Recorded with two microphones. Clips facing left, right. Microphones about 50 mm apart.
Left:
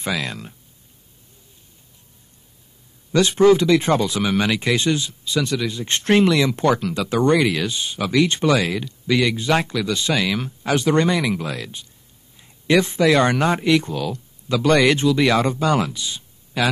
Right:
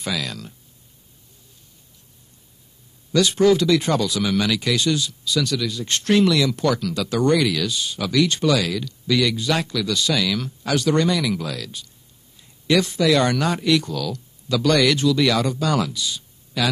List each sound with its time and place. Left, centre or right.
0.0 s speech: left
3.1 s speech: left